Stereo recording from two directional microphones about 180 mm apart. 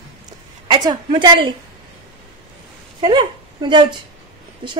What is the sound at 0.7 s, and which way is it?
Speech, 25° right (ahead or behind).